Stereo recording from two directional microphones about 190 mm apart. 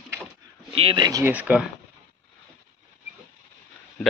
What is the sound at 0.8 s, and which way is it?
Speech, 25° right (ahead or behind).